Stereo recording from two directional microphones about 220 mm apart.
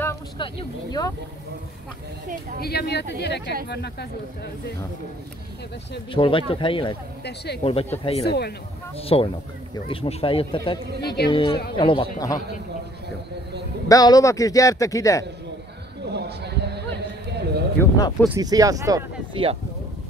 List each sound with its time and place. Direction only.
0.4 s speech: 20° left (ahead or behind)
2.6 s speech: 45° left (ahead or behind)
6.1 s speech: 25° left (ahead or behind)
7.2 s speech: 50° left (ahead or behind)
8.0 s speech: 25° left (ahead or behind)
13.8 s a man's voice: 15° left (ahead or behind)
16.1 s a sound: 50° right (ahead or behind)
17.7 s a man's voice: 15° left (ahead or behind)
18.3 s speech: 15° right (ahead or behind)